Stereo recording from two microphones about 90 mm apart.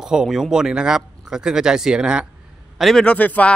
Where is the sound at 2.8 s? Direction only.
Centre (ahead or behind).